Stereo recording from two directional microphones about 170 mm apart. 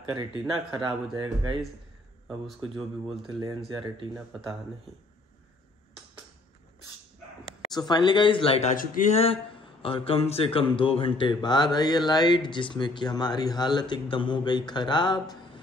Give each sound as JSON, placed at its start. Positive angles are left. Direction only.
{"t": 0.0, "sound": "speech", "side_deg": -25}
{"t": 2.2, "sound": "speech", "side_deg": 0}
{"t": 3.3, "sound": "speech", "side_deg": -25}
{"t": 3.9, "sound": "speech", "side_deg": 0}
{"t": 7.7, "sound": "speech", "side_deg": 25}